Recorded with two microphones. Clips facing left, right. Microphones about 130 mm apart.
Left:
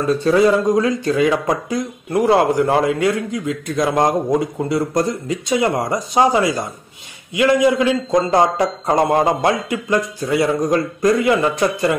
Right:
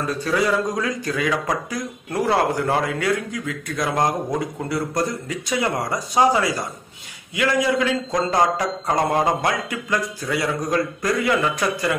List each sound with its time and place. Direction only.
0.2 s speech: 25° left (ahead or behind)